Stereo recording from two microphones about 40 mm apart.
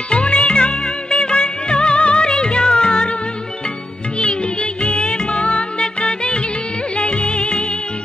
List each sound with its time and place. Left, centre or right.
0.1 s music: left
4.2 s music: left